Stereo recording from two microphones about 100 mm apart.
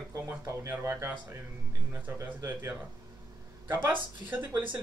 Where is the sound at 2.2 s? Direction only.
20° right (ahead or behind).